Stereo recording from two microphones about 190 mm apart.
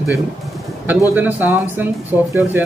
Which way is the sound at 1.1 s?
10° right (ahead or behind).